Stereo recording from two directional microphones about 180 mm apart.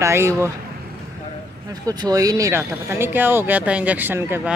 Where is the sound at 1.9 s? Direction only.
20° right (ahead or behind).